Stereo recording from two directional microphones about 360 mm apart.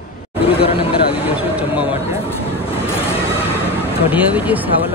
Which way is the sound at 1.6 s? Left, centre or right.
Centre.